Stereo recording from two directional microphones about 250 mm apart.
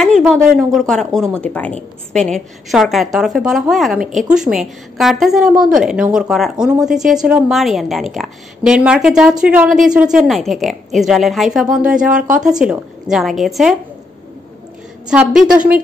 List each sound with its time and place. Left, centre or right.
0.0 s a woman's voice: centre
15.0 s a woman's voice: centre